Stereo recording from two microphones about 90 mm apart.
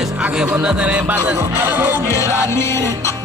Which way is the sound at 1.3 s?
25° right (ahead or behind).